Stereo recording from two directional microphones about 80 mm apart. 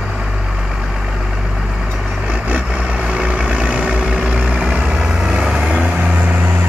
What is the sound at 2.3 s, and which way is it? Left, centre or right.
Vehicle, centre.